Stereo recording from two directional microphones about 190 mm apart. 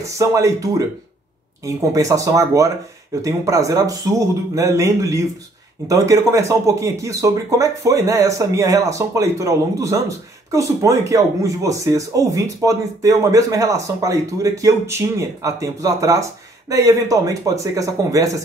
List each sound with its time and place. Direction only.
0.0 s speech: 15° right (ahead or behind)